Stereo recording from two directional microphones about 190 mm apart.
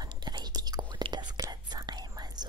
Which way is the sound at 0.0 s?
20° right (ahead or behind).